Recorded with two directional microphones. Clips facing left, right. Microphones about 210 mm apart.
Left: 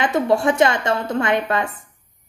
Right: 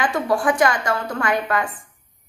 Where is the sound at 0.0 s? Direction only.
25° left (ahead or behind).